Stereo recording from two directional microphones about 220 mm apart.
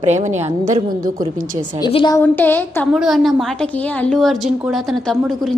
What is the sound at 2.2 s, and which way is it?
Speech, 10° left (ahead or behind).